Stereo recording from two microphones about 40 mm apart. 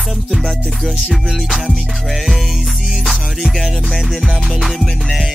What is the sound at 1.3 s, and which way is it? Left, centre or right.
Music, centre.